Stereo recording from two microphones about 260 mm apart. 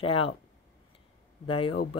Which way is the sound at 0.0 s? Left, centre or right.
Left.